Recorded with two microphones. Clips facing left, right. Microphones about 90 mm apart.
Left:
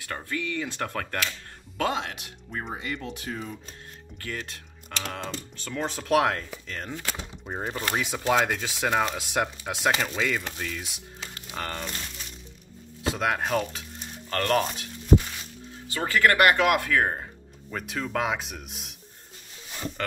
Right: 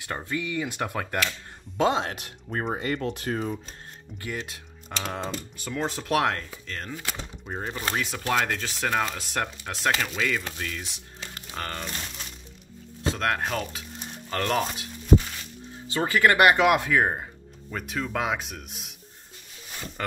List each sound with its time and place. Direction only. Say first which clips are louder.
0.0 s speech: right 1 dB; 20° right (ahead or behind)
1.8 s speech: right 4 dB; 25° right (ahead or behind)
2.0 s speech: right 4 dB; 45° right (ahead or behind)
4.2 s speech: right 2 dB; 15° right (ahead or behind); by 11.8 s 5° left (ahead or behind)
13.1 s speech: left 1 dB; 5° left (ahead or behind)
15.9 s speech: right 1 dB; 20° right (ahead or behind)
17.6 s speech: right 1 dB; centre (ahead or behind)
20.0 s speech: right 1 dB; 10° right (ahead or behind)